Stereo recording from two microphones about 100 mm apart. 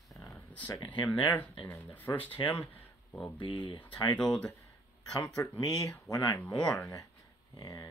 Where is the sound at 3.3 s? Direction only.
55° left (ahead or behind).